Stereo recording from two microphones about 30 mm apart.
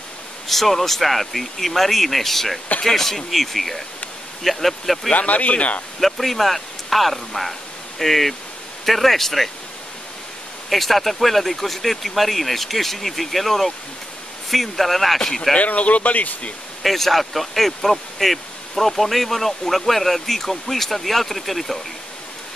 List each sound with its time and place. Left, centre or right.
0.5 s speech: centre
5.1 s speech: left
5.9 s speech: centre
10.7 s speech: centre
15.1 s speech: centre
15.6 s speech: left
16.8 s speech: centre